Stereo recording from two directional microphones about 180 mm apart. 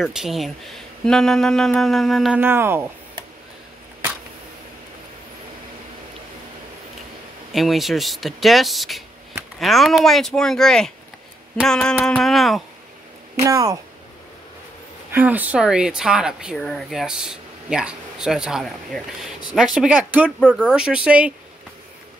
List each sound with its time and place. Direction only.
0.0 s speech: centre (ahead or behind)
7.5 s speech: centre (ahead or behind)
13.4 s speech: 20° right (ahead or behind)
15.0 s speech: 10° right (ahead or behind)